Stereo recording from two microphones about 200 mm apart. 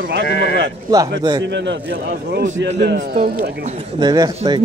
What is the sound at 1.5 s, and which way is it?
Speech, 60° right (ahead or behind).